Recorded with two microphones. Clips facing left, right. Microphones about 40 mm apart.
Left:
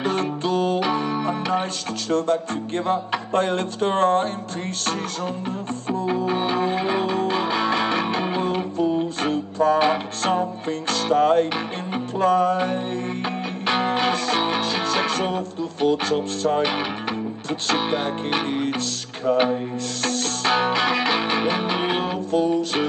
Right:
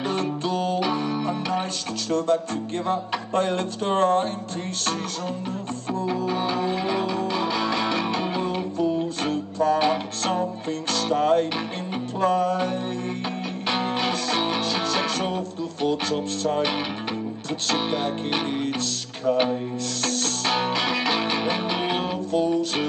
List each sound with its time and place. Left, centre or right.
0.0 s music: left
5.9 s music: left